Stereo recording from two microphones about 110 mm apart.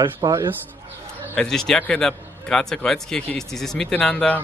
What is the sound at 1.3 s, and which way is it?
A man's voice, 5° left (ahead or behind).